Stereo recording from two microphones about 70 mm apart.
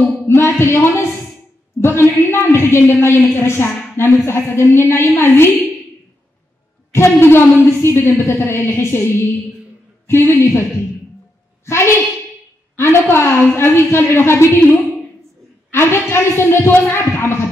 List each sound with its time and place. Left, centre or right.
0.3 s a woman's voice: left
6.9 s a woman's voice: left
10.3 s a woman's voice: left
11.6 s a woman's voice: left
15.7 s a sound: left